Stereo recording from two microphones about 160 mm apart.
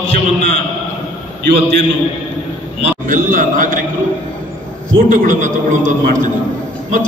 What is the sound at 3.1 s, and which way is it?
Speech, 55° right (ahead or behind).